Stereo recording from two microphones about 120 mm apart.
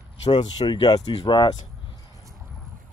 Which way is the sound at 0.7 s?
35° left (ahead or behind).